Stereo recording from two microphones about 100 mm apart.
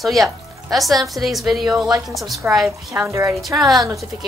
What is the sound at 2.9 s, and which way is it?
Speech, 30° right (ahead or behind).